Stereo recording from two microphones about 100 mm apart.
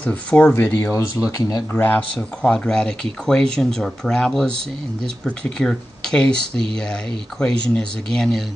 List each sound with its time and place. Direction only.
0.0 s speech: 15° left (ahead or behind)
0.9 s speech: 35° left (ahead or behind)
1.7 s speech: 20° left (ahead or behind)
2.1 s speech: 10° left (ahead or behind)